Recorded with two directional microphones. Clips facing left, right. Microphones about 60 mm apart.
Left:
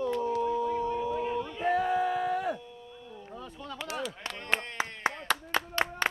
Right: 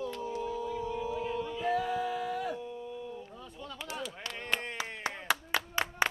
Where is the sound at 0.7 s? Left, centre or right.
Left.